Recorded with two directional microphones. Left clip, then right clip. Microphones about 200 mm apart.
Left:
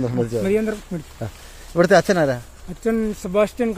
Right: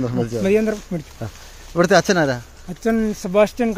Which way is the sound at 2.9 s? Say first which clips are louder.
Right 1 dB; 45° right (ahead or behind).